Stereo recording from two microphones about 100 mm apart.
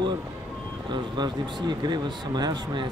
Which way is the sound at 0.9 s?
45° right (ahead or behind).